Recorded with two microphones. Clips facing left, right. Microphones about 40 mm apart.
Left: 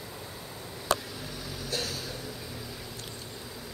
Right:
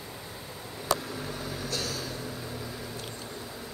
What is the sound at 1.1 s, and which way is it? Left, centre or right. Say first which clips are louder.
Vehicle: right 4 dB; right.